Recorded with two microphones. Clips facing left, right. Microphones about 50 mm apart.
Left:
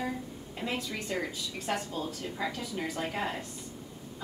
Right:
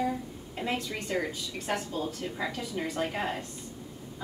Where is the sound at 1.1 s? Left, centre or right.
Centre.